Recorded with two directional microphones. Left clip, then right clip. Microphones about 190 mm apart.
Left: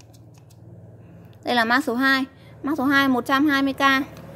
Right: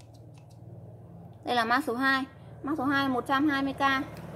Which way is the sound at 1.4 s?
40° left (ahead or behind).